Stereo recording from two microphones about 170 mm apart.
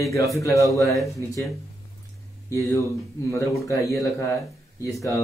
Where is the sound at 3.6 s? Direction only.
20° left (ahead or behind).